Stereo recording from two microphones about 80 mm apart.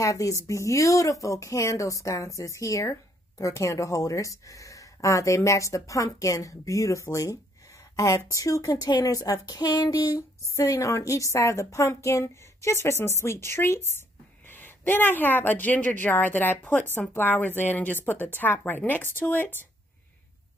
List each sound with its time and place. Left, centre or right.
0.0 s a woman's voice: left